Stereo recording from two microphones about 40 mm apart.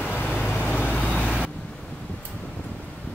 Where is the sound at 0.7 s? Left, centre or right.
Left.